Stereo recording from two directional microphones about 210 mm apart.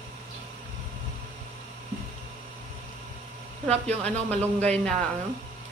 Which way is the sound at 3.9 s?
5° left (ahead or behind).